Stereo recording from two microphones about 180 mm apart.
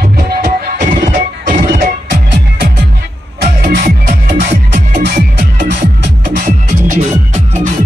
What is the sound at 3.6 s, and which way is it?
Music, 55° right (ahead or behind).